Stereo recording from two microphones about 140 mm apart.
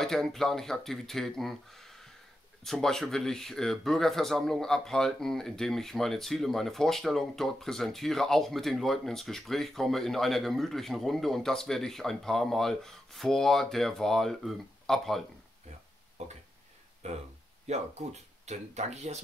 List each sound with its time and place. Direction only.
0.0 s speech: 5° left (ahead or behind)
16.2 s a sound: 55° right (ahead or behind)
17.0 s speech: 55° right (ahead or behind)